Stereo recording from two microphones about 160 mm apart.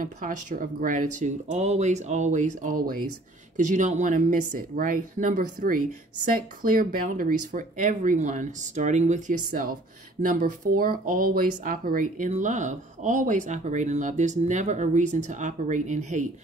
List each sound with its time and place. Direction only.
0.0 s speech: 55° right (ahead or behind)